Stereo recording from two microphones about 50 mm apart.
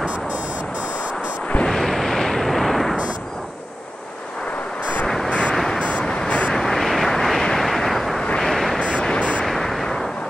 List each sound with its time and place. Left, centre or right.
0.0 s buzzer: right
1.7 s artillery fire: centre
5.0 s vehicle: centre
5.3 s vehicle: centre
5.7 s a sound: centre
6.5 s vehicle: centre
8.9 s music: centre
9.6 s artillery fire: centre